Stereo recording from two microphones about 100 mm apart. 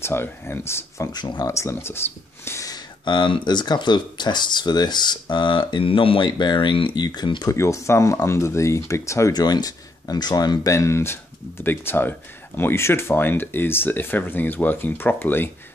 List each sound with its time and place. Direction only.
0.0 s speech: 25° left (ahead or behind)
1.1 s speech: 45° left (ahead or behind)
1.5 s speech: 25° left (ahead or behind)
2.7 s speech: 50° left (ahead or behind)
7.4 s speech: 30° left (ahead or behind)
9.3 s speech: 45° left (ahead or behind); by 15.5 s 20° left (ahead or behind)